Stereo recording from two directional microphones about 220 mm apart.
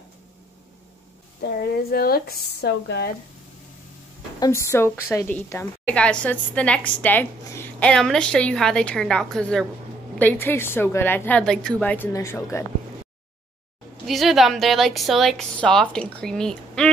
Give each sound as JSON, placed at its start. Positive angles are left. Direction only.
{"t": 1.4, "sound": "speech", "side_deg": 45}
{"t": 4.4, "sound": "a woman's voice", "side_deg": 15}
{"t": 14.0, "sound": "a woman's voice", "side_deg": 0}